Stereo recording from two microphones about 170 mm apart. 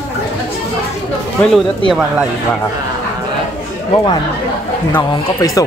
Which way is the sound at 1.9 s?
5° right (ahead or behind).